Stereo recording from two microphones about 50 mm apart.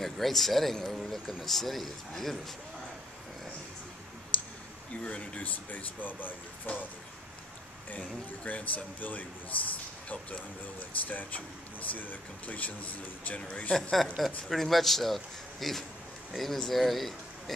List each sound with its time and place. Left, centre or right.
0.0 s speech: centre
4.3 s clicking: left
5.0 s speech: left
8.5 s speech: left
10.0 s speech: left
10.8 s speech: left
14.1 s speech: centre